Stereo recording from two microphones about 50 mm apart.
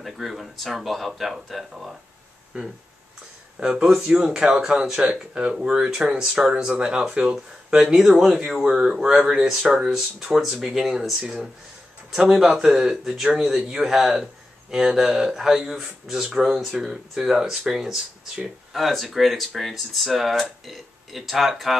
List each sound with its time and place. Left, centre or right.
0.0 s speech: centre
2.5 s speech: right
4.1 s speech: centre
7.3 s speech: centre